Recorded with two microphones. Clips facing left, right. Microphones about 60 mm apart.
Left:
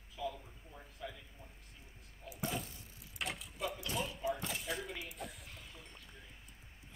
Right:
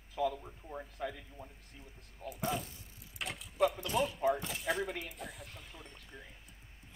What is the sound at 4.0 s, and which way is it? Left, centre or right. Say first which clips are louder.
Speech: right 8 dB; right.